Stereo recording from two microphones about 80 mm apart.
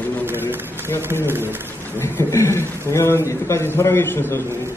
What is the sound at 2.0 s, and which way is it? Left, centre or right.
A man's voice, left.